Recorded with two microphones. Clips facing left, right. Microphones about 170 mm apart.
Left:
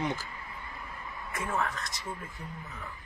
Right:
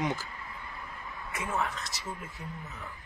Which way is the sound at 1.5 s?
Centre (ahead or behind).